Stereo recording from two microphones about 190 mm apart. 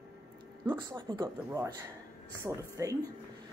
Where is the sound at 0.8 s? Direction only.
25° right (ahead or behind).